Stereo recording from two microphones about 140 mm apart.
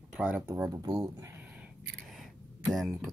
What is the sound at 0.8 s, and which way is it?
Speech, 30° right (ahead or behind).